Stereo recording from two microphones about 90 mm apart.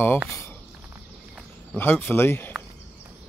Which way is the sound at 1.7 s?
20° left (ahead or behind).